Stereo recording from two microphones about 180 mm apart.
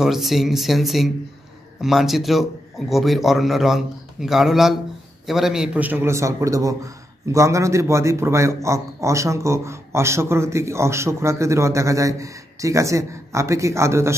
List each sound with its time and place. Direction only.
0.0 s a man's voice: centre (ahead or behind)